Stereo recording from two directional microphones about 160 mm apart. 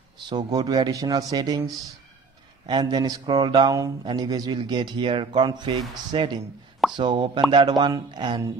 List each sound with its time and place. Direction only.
0.3 s speech: 25° right (ahead or behind)
2.6 s speech: 25° right (ahead or behind)